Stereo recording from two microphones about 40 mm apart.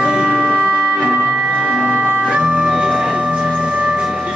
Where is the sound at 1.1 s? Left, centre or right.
Right.